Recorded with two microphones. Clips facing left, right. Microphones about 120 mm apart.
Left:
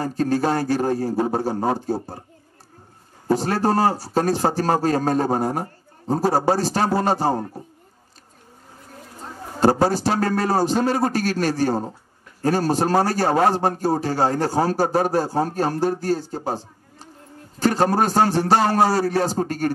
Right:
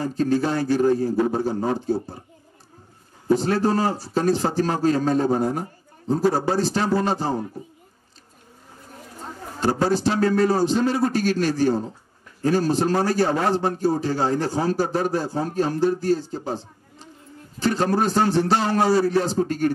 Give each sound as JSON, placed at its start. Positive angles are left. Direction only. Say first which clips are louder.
{"t": 0.2, "sound": "a man's voice", "louder": "left 1 dB", "side_deg": 45}
{"t": 3.3, "sound": "a man's voice", "louder": "even", "side_deg": 40}
{"t": 9.6, "sound": "a man's voice", "louder": "left 3 dB", "side_deg": 40}